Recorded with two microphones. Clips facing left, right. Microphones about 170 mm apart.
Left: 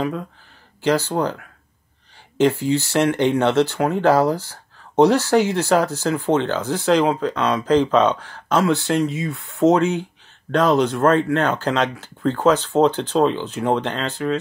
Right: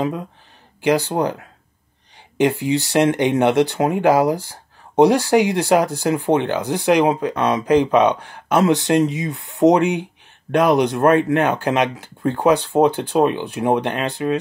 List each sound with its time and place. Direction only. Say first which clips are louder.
0.0 s speech: right 1 dB; 20° right (ahead or behind)
2.6 s speech: right 2 dB; 15° right (ahead or behind)